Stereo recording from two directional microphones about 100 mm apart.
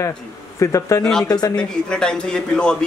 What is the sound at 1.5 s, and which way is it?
Speech, 10° left (ahead or behind).